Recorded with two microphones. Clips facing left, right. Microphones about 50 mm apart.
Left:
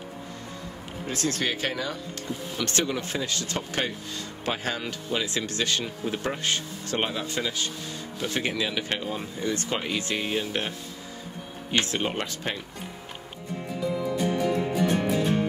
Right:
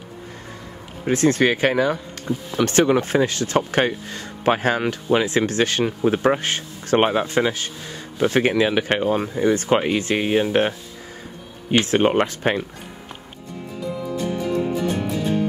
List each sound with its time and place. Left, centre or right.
1.0 s speech: right
2.6 s speech: right
3.0 s speech: right
9.2 s speech: right
11.8 s speech: right
13.7 s music: centre